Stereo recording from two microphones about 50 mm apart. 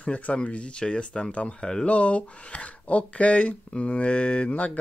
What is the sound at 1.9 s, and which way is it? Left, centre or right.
Speech, left.